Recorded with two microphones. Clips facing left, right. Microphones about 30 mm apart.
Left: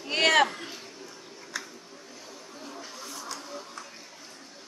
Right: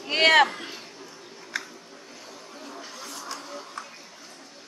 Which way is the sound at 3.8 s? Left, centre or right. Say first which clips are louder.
Right 4 dB; right.